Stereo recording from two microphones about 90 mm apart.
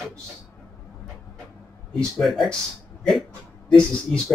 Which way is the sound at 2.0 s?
5° left (ahead or behind).